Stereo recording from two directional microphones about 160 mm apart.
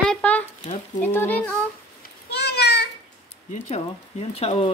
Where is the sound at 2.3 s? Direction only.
90° left.